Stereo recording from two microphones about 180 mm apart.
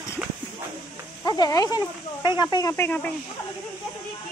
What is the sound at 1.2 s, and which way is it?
Speech, 20° left (ahead or behind).